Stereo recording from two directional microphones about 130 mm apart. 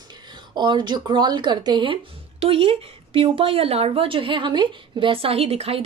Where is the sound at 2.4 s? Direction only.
45° right (ahead or behind).